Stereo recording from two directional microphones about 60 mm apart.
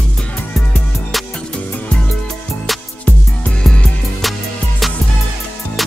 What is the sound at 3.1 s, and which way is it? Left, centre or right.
Music, left.